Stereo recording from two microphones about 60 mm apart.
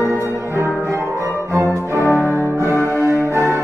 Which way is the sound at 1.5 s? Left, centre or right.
Right.